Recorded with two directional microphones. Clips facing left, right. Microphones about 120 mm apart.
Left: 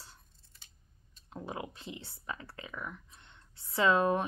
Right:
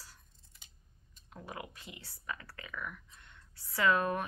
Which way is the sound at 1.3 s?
25° left (ahead or behind).